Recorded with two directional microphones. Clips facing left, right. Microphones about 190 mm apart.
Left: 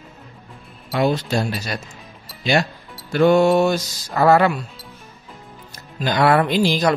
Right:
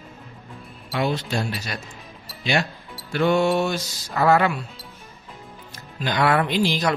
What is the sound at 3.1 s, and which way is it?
Speech, 40° left (ahead or behind).